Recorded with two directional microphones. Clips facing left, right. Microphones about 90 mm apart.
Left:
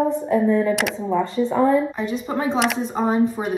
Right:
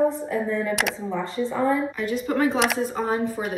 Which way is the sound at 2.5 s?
Centre (ahead or behind).